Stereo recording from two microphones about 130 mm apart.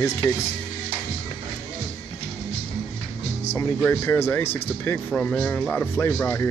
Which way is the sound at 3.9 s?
20° left (ahead or behind).